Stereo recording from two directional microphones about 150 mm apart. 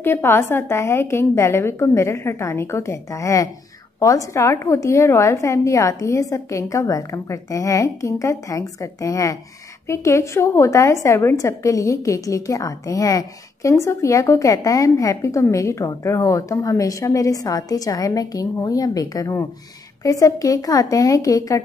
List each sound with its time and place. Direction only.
0.0 s a woman's voice: 15° left (ahead or behind)